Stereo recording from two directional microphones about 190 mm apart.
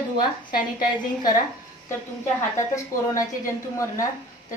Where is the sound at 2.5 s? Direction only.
15° left (ahead or behind).